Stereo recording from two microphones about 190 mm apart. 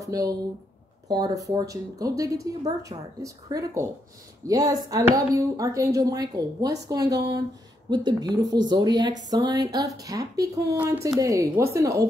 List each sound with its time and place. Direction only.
0.0 s a woman's voice: 20° right (ahead or behind)